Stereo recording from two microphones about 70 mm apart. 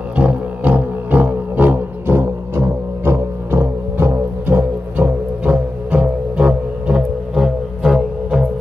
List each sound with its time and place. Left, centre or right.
0.1 s music: centre
7.3 s music: centre